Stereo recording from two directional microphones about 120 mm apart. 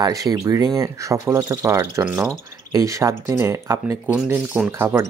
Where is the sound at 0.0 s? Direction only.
30° right (ahead or behind).